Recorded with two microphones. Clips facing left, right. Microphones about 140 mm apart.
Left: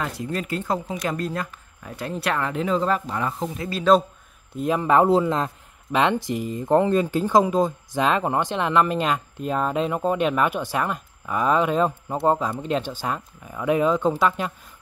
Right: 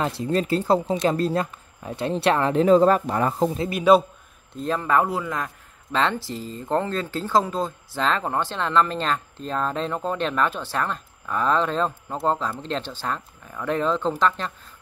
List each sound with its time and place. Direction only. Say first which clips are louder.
0.0 s speech: right 5 dB; 30° right (ahead or behind)
4.6 s speech: left 3 dB; 15° left (ahead or behind)
5.9 s speech: left 3 dB; 15° left (ahead or behind)